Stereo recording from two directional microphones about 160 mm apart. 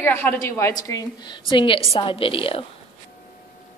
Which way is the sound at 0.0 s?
15° left (ahead or behind).